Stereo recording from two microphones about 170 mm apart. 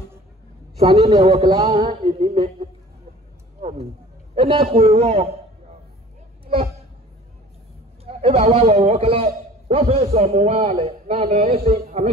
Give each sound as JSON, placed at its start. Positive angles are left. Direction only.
{"t": 0.7, "sound": "music", "side_deg": -35}
{"t": 4.4, "sound": "a man's voice", "side_deg": -35}
{"t": 6.4, "sound": "a sound", "side_deg": -35}
{"t": 8.0, "sound": "a man's voice", "side_deg": -35}